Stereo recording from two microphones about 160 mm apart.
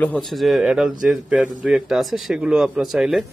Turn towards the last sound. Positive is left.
turn(degrees=0)  # may be behind; listen again after turning